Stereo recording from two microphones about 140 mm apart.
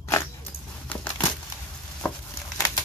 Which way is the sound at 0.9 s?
10° left (ahead or behind).